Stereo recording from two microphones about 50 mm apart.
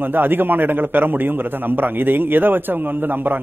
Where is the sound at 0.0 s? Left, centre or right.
Right.